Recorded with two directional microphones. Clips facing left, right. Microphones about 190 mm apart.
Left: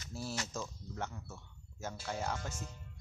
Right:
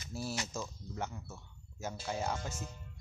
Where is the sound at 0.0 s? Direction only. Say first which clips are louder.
Right 2 dB; 10° right (ahead or behind).